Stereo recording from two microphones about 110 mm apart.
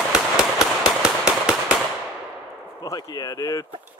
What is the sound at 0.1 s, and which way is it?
Firecracker, 5° right (ahead or behind).